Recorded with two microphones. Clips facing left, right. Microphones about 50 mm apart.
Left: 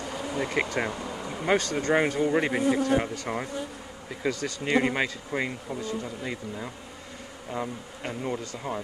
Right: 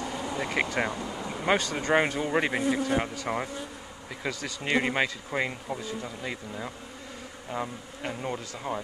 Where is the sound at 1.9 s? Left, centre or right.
Centre.